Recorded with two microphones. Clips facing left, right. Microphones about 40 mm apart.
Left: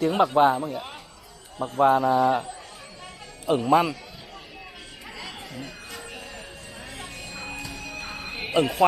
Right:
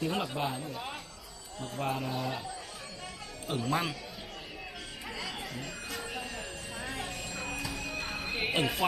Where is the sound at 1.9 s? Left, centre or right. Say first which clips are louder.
Left 14 dB; left.